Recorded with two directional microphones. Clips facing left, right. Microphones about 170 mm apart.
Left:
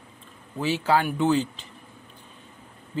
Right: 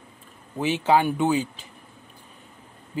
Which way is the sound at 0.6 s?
20° right (ahead or behind).